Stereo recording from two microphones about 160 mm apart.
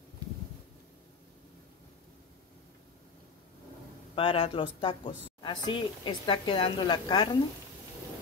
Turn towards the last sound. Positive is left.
turn(degrees=25)  # may be behind; listen again after turning